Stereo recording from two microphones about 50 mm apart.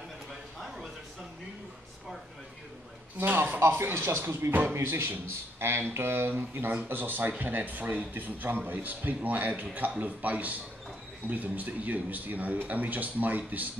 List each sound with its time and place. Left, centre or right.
3.3 s speech: right
6.9 s speech: right